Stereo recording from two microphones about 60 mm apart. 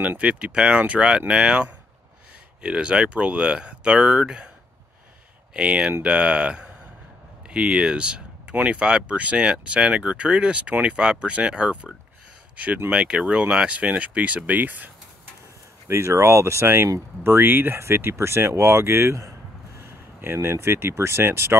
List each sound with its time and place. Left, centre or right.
0.2 s speech: centre
5.5 s speech: centre
12.9 s speech: centre
15.9 s speech: right
19.9 s a sound: right
20.3 s speech: right